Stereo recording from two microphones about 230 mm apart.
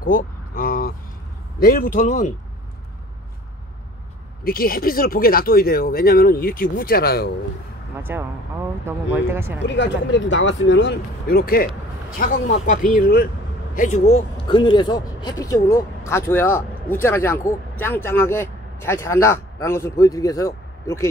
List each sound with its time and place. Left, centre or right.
0.0 s vehicle: left
1.6 s speech: left
4.5 s speech: left
8.0 s speech: centre
9.6 s speech: left; by 21.1 s centre